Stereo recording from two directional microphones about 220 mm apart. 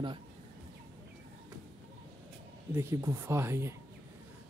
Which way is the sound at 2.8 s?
15° right (ahead or behind).